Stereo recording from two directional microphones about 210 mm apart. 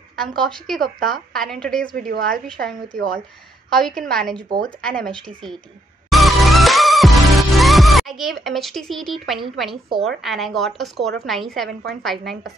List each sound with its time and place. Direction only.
0.4 s speech: centre (ahead or behind)
2.0 s a woman's voice: 45° right (ahead or behind)
2.2 s speech: centre (ahead or behind)
6.0 s music: centre (ahead or behind)
10.0 s speech: centre (ahead or behind)